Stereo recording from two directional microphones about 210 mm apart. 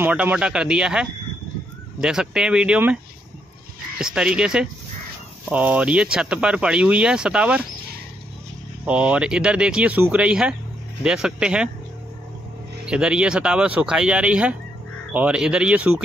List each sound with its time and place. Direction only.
0.0 s speech: 5° right (ahead or behind)
4.0 s speech: 5° right (ahead or behind)
8.8 s speech: 5° right (ahead or behind)
12.8 s speech: 5° right (ahead or behind)